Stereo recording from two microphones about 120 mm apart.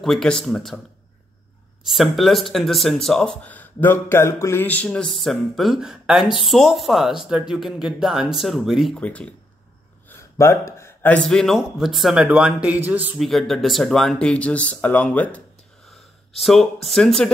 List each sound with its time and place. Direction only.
0.0 s speech: 5° left (ahead or behind)
1.9 s speech: centre (ahead or behind)
3.4 s speech: 15° left (ahead or behind)
10.0 s a sound: 25° left (ahead or behind)
11.2 s a man's voice: 5° left (ahead or behind); by 13.1 s 15° right (ahead or behind)
13.2 s speech: centre (ahead or behind)
16.3 s speech: centre (ahead or behind)